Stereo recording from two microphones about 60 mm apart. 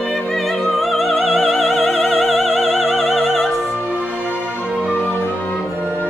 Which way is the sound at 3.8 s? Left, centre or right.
Left.